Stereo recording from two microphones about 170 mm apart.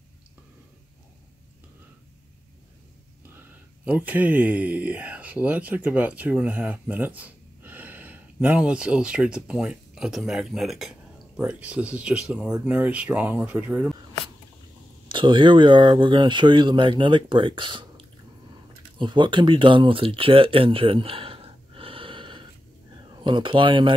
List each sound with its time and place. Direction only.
3.3 s speech: 10° right (ahead or behind)
15.0 s speech: 30° right (ahead or behind)